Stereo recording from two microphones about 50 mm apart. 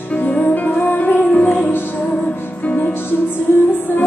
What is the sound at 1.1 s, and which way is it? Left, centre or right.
Music, left.